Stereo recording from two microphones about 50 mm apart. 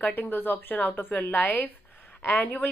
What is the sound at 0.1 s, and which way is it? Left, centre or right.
Speech, left.